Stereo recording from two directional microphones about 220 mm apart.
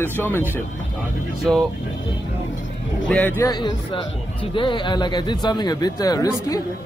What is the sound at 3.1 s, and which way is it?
A man's voice, 10° left (ahead or behind).